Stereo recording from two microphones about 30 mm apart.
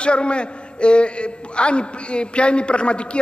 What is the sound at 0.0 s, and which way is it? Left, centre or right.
A man's voice, left.